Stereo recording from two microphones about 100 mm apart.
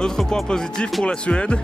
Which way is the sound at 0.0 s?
5° left (ahead or behind).